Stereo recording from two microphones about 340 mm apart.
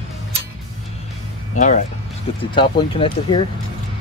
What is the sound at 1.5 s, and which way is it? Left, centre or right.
Speech, left.